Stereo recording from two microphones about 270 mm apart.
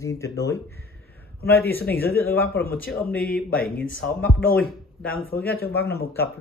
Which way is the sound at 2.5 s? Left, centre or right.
Left.